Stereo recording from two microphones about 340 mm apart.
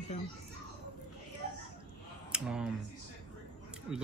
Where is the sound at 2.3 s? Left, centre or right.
Centre.